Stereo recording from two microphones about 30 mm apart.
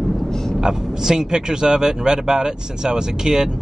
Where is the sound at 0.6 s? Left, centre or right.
Centre.